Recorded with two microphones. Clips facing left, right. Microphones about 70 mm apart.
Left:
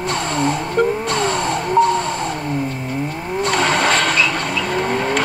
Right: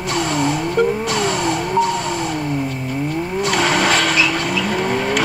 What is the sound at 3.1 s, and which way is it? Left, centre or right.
Vehicle, left.